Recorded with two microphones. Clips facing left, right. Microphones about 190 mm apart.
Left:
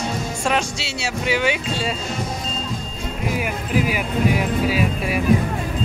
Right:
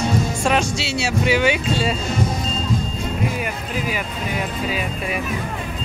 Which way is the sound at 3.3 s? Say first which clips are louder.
Left 4 dB; 10° left (ahead or behind).